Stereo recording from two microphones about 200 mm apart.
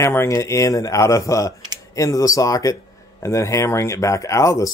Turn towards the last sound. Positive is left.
turn(degrees=15)  # may be behind; listen again after turning